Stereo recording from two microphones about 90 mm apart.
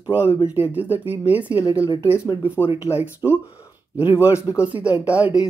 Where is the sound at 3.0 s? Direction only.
20° right (ahead or behind).